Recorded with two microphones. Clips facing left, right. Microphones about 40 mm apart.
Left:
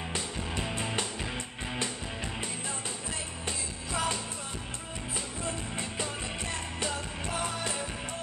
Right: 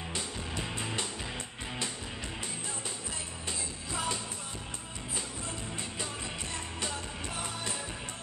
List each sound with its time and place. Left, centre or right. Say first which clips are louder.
3.4 s music: left 1 dB; left
7.3 s music: left 6 dB; left